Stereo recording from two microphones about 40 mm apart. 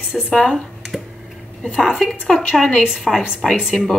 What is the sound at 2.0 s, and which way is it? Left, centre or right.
A woman's voice, centre.